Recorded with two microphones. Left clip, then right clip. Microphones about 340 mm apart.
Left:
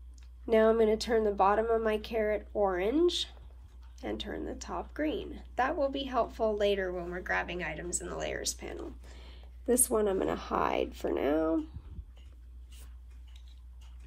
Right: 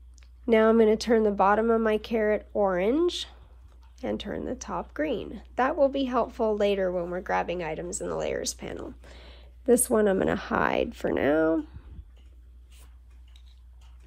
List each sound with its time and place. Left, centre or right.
0.5 s speech: right